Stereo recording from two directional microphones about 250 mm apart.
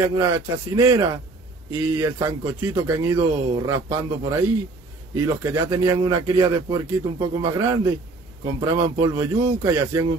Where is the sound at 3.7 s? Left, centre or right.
Centre.